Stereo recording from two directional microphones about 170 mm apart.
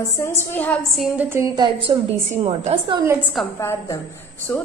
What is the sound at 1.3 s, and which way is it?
A woman's voice, 20° right (ahead or behind).